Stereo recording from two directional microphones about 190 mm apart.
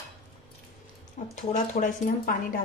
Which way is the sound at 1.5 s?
45° left (ahead or behind).